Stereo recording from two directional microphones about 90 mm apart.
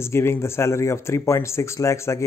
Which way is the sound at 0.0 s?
30° left (ahead or behind).